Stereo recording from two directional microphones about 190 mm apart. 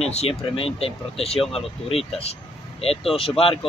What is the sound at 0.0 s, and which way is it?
Speech, 35° left (ahead or behind).